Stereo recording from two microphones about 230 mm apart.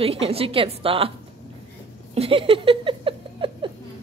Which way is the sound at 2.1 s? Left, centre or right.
Right.